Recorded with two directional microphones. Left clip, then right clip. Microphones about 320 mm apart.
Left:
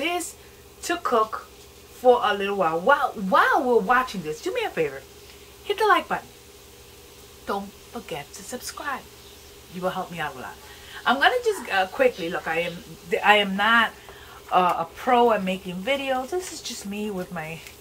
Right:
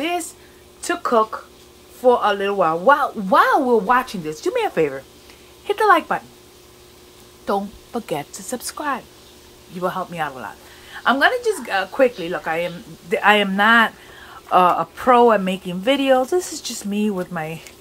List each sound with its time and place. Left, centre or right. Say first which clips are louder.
0.8 s speech: right 5 dB; right
2.2 s a woman's voice: right 5 dB; centre
7.4 s a woman's voice: right 7 dB; centre